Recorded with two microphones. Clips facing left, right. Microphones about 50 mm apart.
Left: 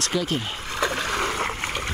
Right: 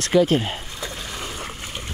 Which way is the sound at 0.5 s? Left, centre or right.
Left.